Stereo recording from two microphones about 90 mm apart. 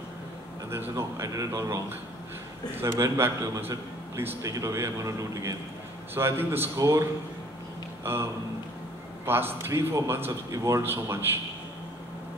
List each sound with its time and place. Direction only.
0.7 s a man's voice: 30° right (ahead or behind)
4.4 s speech: 40° right (ahead or behind)
6.1 s a man's voice: 25° right (ahead or behind)